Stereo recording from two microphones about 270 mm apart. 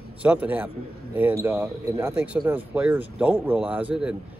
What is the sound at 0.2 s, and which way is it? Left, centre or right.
A man's voice, centre.